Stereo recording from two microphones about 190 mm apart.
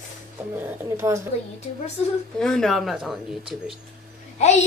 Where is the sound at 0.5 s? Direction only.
10° right (ahead or behind).